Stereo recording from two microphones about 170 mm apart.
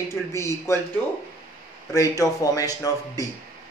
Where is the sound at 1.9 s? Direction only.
20° left (ahead or behind).